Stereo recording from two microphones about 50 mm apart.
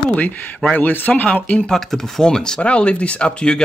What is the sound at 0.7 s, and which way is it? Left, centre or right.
Speech, left.